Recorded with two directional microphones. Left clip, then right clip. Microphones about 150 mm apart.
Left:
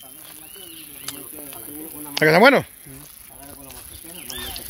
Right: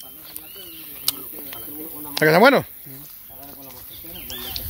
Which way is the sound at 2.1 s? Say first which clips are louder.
Even; centre (ahead or behind).